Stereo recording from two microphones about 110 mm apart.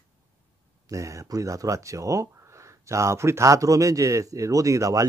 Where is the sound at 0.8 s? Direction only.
30° right (ahead or behind).